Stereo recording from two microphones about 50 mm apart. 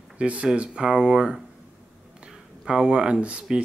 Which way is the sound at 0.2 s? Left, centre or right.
Right.